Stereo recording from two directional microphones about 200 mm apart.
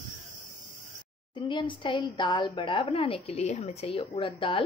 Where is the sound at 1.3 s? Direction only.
25° left (ahead or behind).